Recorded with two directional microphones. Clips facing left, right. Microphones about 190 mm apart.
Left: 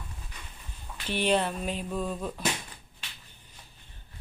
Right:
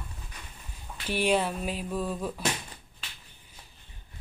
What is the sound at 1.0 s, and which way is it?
Speech, 10° right (ahead or behind).